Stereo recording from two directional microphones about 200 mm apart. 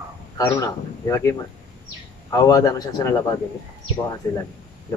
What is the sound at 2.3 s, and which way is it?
Speech, 20° left (ahead or behind).